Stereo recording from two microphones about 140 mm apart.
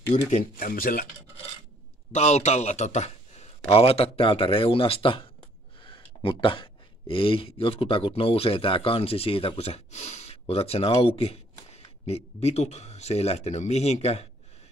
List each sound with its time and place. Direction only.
0.6 s speech: 90° left
2.1 s speech: 55° left (ahead or behind)